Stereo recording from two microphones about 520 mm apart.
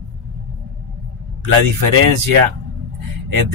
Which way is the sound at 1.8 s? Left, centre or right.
Right.